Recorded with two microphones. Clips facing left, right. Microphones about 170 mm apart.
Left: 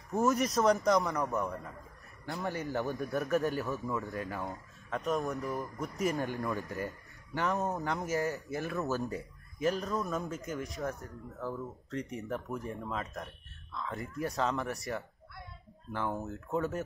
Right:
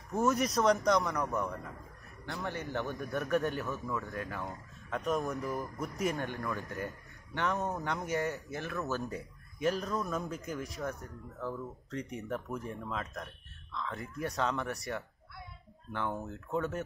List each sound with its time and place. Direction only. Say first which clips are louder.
0.2 s speech: left 1 dB; centre (ahead or behind)
2.3 s speech: left 2 dB; 20° left (ahead or behind)
2.9 s speech: even; centre (ahead or behind)
6.3 s speech: left 3 dB; 20° left (ahead or behind)
6.6 s speech: left 1 dB; centre (ahead or behind)